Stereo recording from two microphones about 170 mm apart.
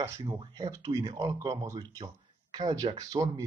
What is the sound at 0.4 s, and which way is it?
Speech, 25° right (ahead or behind).